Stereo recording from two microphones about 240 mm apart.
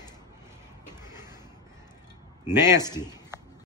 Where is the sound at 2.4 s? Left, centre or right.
Centre.